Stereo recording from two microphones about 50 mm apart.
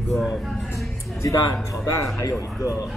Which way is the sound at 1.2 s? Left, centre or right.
Left.